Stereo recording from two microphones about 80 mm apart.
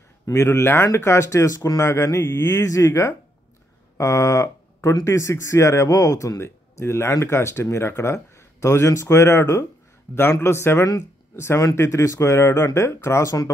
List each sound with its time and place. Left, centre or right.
0.3 s speech: left